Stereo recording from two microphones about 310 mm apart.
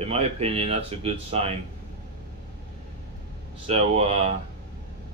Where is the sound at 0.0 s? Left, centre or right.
Centre.